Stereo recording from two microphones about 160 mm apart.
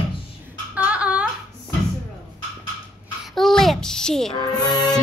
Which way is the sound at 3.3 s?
Centre (ahead or behind).